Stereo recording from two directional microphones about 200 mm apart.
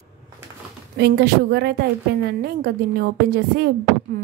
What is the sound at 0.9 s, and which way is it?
A woman's voice, 55° right (ahead or behind).